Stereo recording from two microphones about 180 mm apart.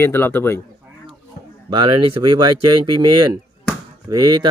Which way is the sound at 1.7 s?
25° right (ahead or behind).